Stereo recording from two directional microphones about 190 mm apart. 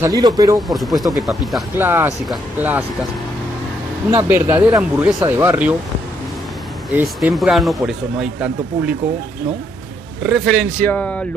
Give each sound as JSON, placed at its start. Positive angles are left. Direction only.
{"t": 0.0, "sound": "speech", "side_deg": -20}
{"t": 0.6, "sound": "speech", "side_deg": 0}
{"t": 1.8, "sound": "speech", "side_deg": -10}
{"t": 4.1, "sound": "speech", "side_deg": -10}
{"t": 6.9, "sound": "speech", "side_deg": -10}
{"t": 10.2, "sound": "speech", "side_deg": 0}